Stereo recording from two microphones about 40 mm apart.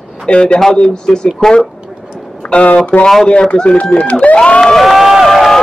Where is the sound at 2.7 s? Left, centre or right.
Left.